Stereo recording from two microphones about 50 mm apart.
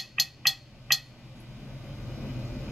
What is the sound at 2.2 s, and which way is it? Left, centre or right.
Vehicle, centre.